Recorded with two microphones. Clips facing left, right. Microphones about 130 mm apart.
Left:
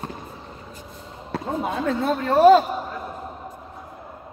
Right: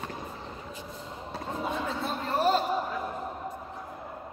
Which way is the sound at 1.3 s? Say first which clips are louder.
Left 7 dB; 65° left (ahead or behind).